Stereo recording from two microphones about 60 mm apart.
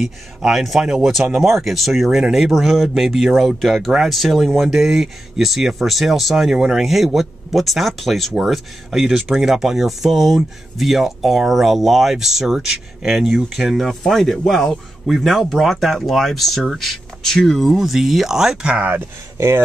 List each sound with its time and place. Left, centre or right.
0.0 s speech: centre
18.7 s speech: right
19.3 s speech: right